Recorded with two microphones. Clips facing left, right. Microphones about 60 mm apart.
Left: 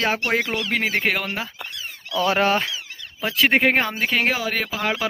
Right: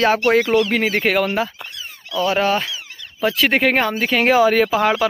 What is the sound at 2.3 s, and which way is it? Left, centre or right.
Speech, left.